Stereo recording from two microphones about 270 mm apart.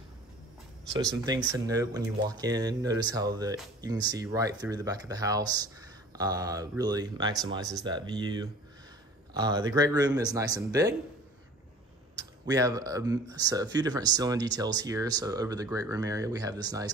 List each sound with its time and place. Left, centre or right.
1.2 s speech: centre
12.2 s speech: centre